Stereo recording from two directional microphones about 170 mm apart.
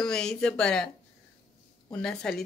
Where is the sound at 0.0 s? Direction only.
5° left (ahead or behind).